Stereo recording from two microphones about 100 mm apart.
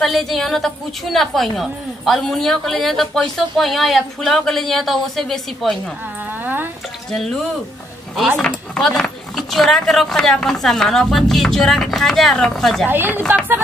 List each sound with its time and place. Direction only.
0.0 s a woman's voice: centre (ahead or behind)
6.4 s a sound: 20° right (ahead or behind)
7.1 s speech: 5° left (ahead or behind)
8.4 s a woman's voice: 5° left (ahead or behind)
12.8 s speech: 20° right (ahead or behind)